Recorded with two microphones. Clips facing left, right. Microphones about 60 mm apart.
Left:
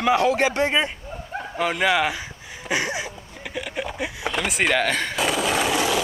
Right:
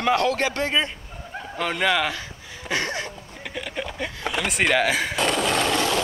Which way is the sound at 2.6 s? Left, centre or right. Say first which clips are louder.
Left 1 dB; centre.